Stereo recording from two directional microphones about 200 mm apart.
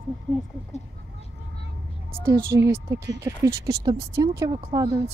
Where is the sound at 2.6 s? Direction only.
15° right (ahead or behind).